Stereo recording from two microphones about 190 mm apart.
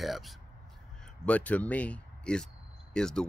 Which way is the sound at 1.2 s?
10° left (ahead or behind).